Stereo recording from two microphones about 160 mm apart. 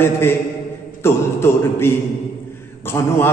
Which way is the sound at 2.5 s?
15° left (ahead or behind).